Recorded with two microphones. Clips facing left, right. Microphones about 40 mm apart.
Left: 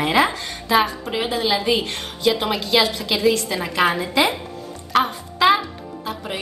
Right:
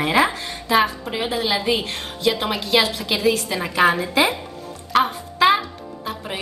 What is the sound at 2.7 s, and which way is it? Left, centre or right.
Speech, right.